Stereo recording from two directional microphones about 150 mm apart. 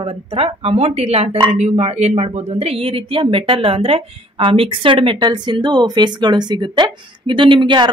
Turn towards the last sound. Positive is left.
turn(degrees=-30)  # may be behind; listen again after turning